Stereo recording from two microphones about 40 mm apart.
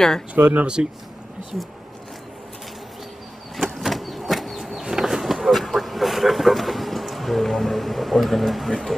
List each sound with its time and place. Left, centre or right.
0.4 s speech: right
3.5 s a sound: centre
3.8 s vehicle: centre